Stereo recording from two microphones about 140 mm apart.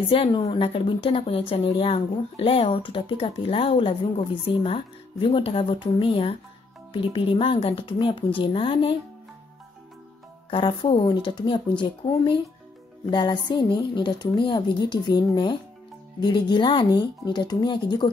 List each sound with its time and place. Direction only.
0.1 s speech: 40° left (ahead or behind)
10.5 s speech: 35° left (ahead or behind)